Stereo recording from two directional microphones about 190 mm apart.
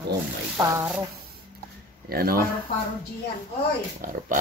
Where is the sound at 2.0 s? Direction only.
50° right (ahead or behind).